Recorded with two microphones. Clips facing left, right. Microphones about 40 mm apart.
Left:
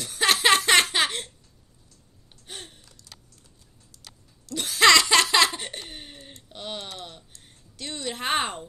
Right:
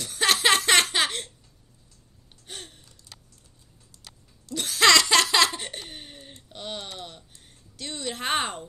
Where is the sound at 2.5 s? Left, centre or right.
Centre.